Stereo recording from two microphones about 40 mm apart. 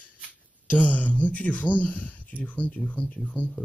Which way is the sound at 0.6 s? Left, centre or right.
Left.